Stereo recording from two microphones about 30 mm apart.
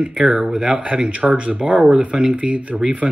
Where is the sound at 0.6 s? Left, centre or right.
Right.